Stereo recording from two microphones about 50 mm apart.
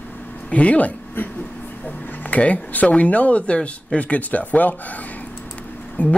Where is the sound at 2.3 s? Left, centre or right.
Left.